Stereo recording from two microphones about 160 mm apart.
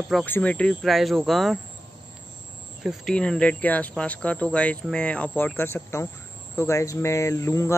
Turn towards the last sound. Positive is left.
turn(degrees=15)  # may be behind; listen again after turning